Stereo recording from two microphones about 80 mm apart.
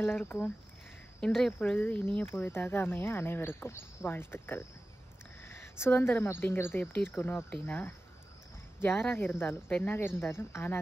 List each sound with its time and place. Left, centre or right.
0.2 s speech: centre
1.7 s speech: left
9.1 s speech: left
9.9 s speech: left